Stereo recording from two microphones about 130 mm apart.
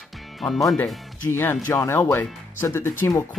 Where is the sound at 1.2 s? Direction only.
15° left (ahead or behind).